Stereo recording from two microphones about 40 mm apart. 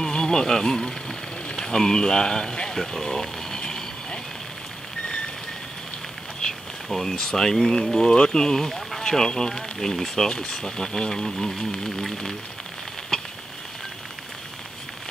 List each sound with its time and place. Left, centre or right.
0.0 s speech: centre
2.8 s vehicle: centre
6.4 s a sound: centre
6.9 s speech: centre
13.1 s sizzle: centre